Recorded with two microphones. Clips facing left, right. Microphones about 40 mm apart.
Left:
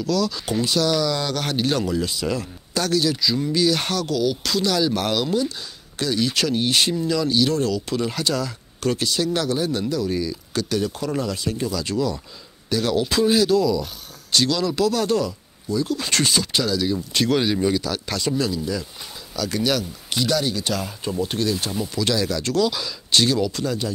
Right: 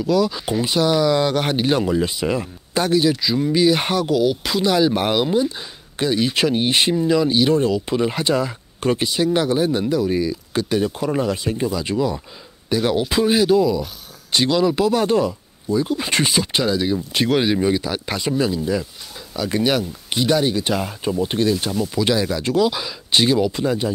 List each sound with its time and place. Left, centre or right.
0.0 s speech: right